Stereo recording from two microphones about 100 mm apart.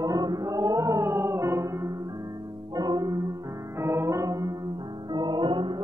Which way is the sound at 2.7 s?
40° right (ahead or behind).